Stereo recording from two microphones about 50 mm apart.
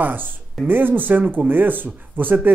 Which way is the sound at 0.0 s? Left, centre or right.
Right.